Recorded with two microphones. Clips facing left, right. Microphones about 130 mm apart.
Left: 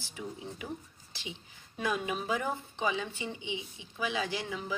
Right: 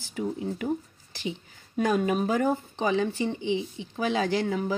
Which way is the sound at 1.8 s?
45° right (ahead or behind).